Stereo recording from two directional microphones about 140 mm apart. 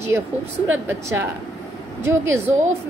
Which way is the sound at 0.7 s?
15° right (ahead or behind).